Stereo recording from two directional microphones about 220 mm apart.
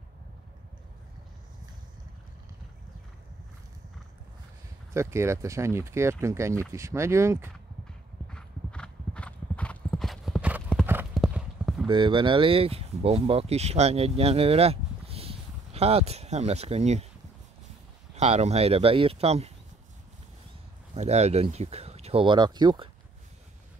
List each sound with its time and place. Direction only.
4.9 s speech: 10° right (ahead or behind)
8.3 s clip-clop: 5° left (ahead or behind)
11.9 s speech: 20° right (ahead or behind)
18.1 s speech: 30° right (ahead or behind)
20.9 s speech: 30° right (ahead or behind)